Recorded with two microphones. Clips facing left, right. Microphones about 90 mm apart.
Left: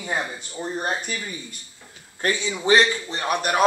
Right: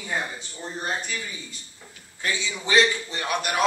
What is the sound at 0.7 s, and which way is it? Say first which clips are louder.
A man's voice: left 2 dB; 50° left (ahead or behind).